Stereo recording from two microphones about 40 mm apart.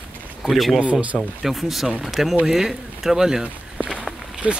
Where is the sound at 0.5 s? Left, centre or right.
Centre.